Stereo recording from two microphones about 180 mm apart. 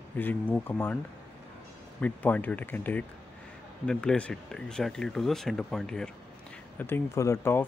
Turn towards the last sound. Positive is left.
turn(degrees=15)  # may be behind; listen again after turning